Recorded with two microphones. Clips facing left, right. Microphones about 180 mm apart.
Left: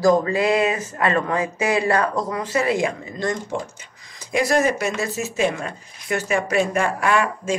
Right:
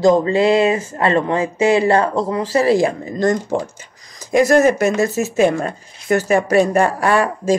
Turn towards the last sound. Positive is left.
turn(degrees=-35)  # may be behind; listen again after turning